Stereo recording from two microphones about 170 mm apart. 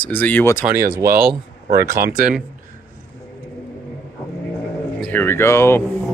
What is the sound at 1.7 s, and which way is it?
Speech, 60° right (ahead or behind).